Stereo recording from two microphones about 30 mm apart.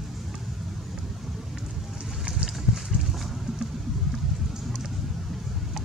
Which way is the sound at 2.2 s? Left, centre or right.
Right.